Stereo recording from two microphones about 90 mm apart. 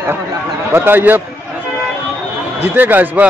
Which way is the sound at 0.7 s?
20° right (ahead or behind).